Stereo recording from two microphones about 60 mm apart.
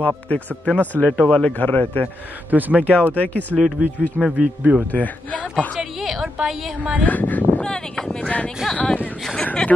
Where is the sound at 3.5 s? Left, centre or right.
Centre.